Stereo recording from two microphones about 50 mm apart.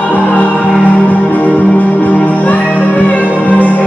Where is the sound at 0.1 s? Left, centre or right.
Left.